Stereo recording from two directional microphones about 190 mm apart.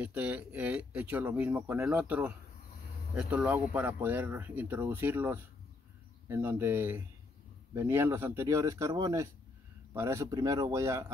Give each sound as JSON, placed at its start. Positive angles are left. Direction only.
{"t": 0.0, "sound": "speech", "side_deg": -5}